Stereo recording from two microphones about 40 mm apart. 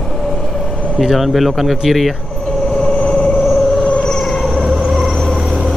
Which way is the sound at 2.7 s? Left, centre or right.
Left.